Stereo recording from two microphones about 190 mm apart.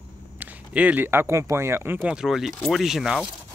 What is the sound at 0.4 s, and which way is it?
Speech, 10° right (ahead or behind).